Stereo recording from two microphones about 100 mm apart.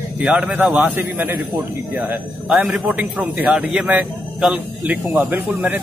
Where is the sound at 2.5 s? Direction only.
Centre (ahead or behind).